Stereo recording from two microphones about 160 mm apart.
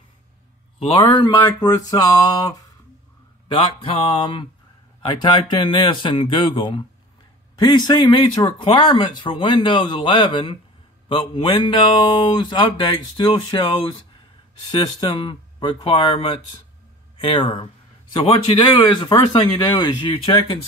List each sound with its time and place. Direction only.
0.7 s speech: 30° left (ahead or behind)
3.5 s speech: 35° left (ahead or behind)